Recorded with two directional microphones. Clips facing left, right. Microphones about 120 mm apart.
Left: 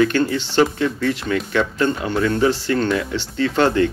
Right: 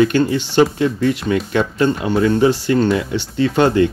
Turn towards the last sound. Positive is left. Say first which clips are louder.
# right 3 dB
turn(degrees=-15)  # may be behind; listen again after turning